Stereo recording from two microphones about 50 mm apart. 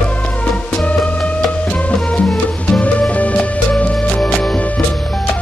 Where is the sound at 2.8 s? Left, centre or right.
Left.